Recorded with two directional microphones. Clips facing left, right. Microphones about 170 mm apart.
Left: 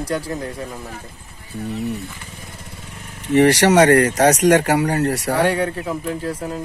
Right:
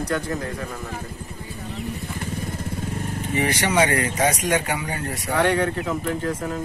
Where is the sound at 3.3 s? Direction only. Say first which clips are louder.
Left 10 dB; 75° left (ahead or behind).